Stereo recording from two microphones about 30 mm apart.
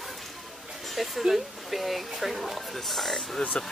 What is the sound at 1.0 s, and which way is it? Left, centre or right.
Speech, centre.